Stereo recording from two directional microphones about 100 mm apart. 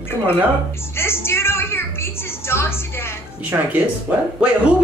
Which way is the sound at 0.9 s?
25° left (ahead or behind).